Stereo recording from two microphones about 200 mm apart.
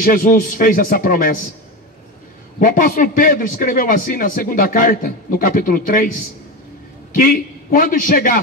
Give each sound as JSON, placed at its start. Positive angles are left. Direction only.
{"t": 0.0, "sound": "a man's voice", "side_deg": 45}
{"t": 2.6, "sound": "a man's voice", "side_deg": 40}
{"t": 7.2, "sound": "a man's voice", "side_deg": 45}